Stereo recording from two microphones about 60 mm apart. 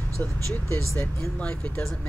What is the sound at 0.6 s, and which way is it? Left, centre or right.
Speech, left.